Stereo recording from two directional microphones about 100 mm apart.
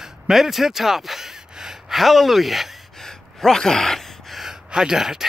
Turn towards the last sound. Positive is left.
turn(degrees=-5)  # may be behind; listen again after turning